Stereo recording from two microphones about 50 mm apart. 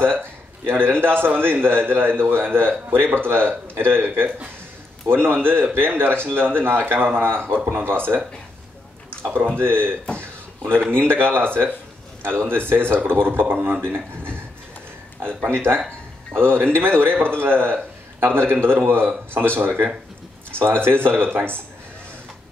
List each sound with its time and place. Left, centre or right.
0.0 s a sound: right
1.0 s speech: right
9.6 s speech: right
10.6 s speech: centre
10.9 s speech: right
15.5 s speech: right